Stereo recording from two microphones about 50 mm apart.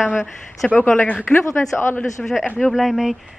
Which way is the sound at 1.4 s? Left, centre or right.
Left.